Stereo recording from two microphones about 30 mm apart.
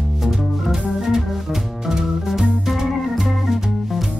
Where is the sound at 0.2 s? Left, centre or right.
Centre.